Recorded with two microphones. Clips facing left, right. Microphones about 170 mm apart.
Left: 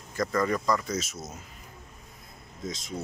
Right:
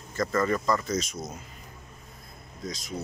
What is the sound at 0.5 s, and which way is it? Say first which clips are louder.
Speech: right 1 dB; 5° right (ahead or behind).